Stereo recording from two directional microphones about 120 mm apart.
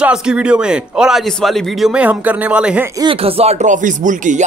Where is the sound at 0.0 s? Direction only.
10° right (ahead or behind).